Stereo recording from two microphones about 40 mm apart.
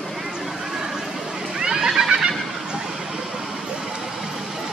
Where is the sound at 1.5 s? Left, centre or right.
Centre.